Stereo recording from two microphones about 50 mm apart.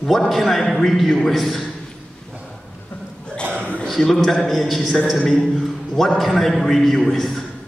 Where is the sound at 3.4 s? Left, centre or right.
Right.